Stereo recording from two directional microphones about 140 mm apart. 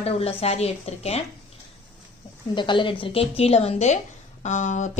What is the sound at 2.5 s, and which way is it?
A woman's voice, 35° left (ahead or behind).